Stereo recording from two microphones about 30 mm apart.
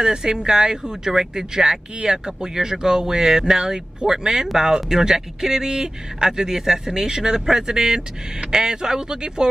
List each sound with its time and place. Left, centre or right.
0.0 s speech: right